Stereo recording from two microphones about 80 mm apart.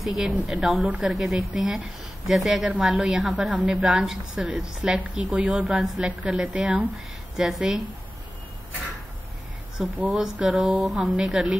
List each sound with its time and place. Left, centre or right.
0.5 s a woman's voice: centre
1.1 s a woman's voice: centre
9.9 s speech: centre
10.2 s a woman's voice: centre